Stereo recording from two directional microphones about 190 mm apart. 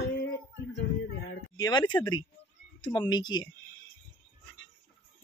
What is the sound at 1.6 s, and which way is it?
Speech, 25° left (ahead or behind).